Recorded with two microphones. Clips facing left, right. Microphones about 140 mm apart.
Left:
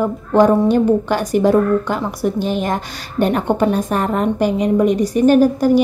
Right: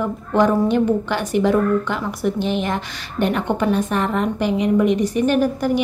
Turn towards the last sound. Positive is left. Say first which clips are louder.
# left 6 dB
turn(degrees=40)  # may be behind; listen again after turning